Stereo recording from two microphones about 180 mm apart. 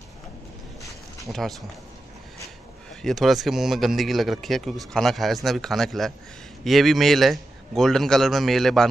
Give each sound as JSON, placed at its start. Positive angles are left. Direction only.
{"t": 1.3, "sound": "speech", "side_deg": -15}
{"t": 2.9, "sound": "a man's voice", "side_deg": 0}